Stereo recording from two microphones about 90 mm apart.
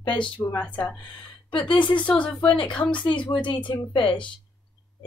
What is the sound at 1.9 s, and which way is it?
Speech, 15° left (ahead or behind).